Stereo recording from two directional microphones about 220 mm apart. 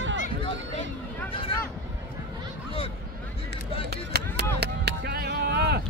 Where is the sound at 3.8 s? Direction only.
45° right (ahead or behind).